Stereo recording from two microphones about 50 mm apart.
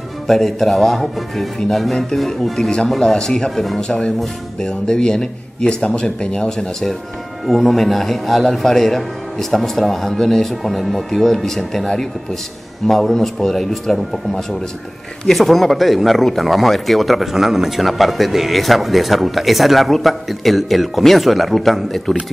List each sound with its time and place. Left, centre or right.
0.3 s speech: centre
3.8 s speech: centre